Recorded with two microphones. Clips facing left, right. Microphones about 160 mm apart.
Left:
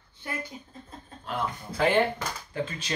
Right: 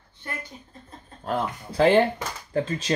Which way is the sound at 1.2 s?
40° right (ahead or behind).